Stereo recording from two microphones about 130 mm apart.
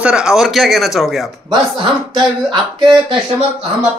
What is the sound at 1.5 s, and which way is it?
Speech, 40° right (ahead or behind).